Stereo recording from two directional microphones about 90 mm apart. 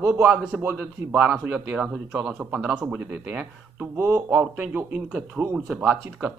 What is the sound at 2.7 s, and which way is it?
Speech, 15° right (ahead or behind).